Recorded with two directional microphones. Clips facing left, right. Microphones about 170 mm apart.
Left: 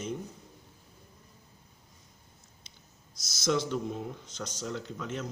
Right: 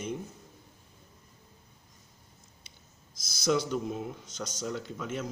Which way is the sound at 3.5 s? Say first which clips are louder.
Right 1 dB; 5° right (ahead or behind).